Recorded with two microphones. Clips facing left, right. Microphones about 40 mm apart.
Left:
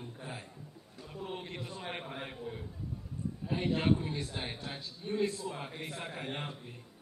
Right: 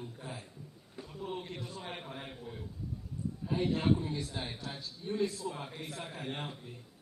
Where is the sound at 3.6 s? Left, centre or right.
Left.